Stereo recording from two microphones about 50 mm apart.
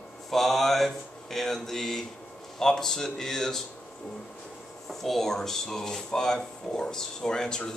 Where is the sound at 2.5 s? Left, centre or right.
Centre.